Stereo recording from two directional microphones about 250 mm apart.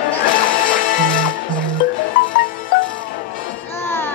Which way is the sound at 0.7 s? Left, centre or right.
Left.